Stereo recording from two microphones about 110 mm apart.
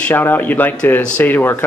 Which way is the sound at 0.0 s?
15° left (ahead or behind).